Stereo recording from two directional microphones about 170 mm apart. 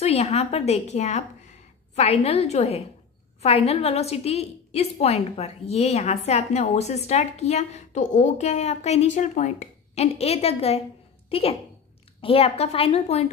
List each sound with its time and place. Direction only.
0.0 s a woman's voice: 40° left (ahead or behind)